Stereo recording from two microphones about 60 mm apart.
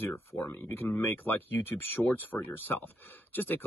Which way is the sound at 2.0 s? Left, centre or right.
Centre.